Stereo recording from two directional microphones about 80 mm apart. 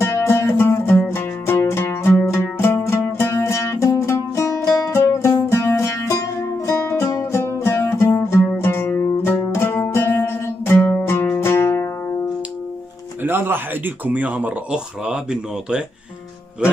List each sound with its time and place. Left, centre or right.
0.0 s music: left
13.2 s speech: right